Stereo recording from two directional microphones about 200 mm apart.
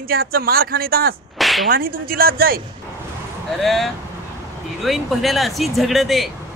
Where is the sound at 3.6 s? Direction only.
Centre (ahead or behind).